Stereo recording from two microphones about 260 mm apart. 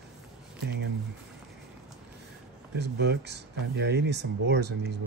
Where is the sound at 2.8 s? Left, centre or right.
Right.